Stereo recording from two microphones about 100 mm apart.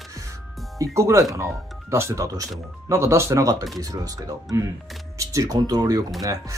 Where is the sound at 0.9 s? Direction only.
30° right (ahead or behind).